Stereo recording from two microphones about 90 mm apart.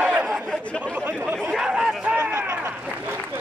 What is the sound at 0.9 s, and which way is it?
Chatter, 20° right (ahead or behind).